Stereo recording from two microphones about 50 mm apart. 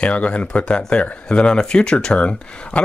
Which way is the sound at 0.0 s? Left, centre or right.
Left.